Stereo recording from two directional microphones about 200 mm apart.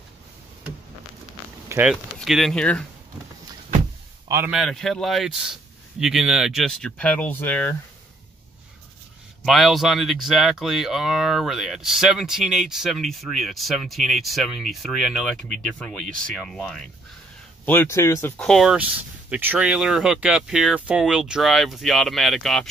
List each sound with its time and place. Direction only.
1.7 s speech: 10° right (ahead or behind)
4.5 s speech: centre (ahead or behind)
9.4 s speech: centre (ahead or behind)
18.4 s speech: centre (ahead or behind)